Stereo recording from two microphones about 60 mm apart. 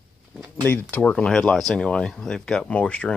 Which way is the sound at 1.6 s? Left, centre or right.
Centre.